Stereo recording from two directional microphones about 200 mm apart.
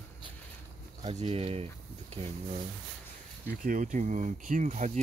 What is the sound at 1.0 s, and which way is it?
Speech, 30° right (ahead or behind).